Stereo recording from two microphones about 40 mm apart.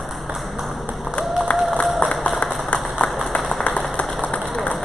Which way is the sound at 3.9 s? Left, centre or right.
Left.